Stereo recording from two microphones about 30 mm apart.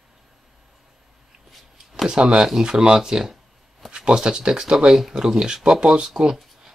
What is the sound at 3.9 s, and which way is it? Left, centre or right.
Speech, right.